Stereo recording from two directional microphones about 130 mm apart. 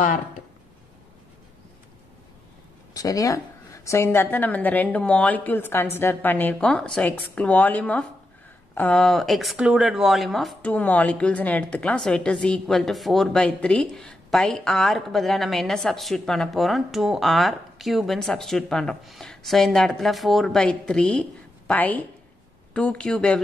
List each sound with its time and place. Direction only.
2.9 s a woman's voice: 25° left (ahead or behind); by 10.7 s centre (ahead or behind)
10.7 s a woman's voice: 10° left (ahead or behind)